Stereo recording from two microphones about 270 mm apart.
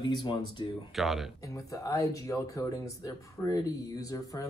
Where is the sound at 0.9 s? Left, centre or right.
Centre.